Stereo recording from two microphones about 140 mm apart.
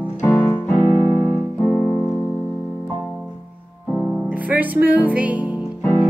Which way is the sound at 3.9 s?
5° right (ahead or behind).